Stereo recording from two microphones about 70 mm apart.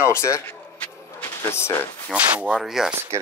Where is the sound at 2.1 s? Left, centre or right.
Centre.